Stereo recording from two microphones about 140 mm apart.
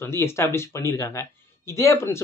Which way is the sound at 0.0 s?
20° left (ahead or behind).